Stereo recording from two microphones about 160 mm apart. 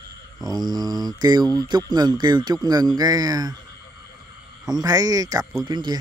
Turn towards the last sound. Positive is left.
turn(degrees=-25)  # may be behind; listen again after turning